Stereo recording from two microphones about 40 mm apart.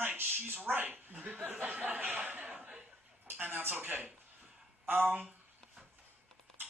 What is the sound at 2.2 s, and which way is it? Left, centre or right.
Speech, right.